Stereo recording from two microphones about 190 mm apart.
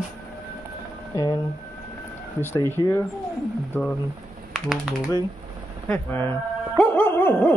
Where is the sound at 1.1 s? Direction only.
20° left (ahead or behind).